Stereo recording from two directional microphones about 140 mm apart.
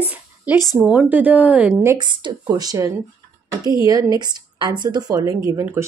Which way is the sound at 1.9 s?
35° right (ahead or behind).